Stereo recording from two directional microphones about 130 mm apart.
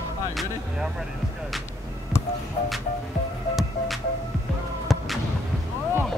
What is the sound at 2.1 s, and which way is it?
Music, 20° left (ahead or behind).